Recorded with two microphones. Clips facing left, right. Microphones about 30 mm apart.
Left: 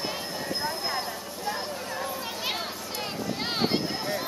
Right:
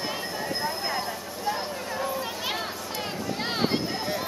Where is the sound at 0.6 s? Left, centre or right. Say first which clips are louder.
Right 1 dB; centre.